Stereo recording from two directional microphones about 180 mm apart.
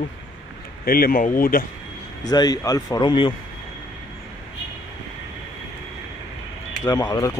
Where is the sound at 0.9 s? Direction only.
50° left (ahead or behind).